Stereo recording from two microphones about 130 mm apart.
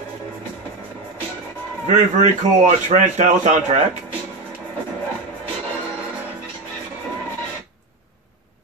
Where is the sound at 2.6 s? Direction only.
60° right (ahead or behind).